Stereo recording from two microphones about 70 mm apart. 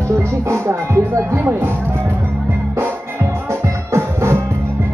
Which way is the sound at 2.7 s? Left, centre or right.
Right.